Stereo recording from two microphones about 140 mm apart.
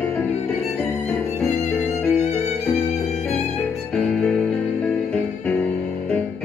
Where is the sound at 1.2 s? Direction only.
5° left (ahead or behind).